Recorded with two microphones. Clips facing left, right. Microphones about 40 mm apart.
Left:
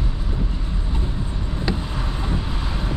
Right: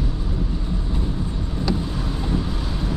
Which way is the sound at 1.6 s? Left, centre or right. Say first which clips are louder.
Right 2 dB; left.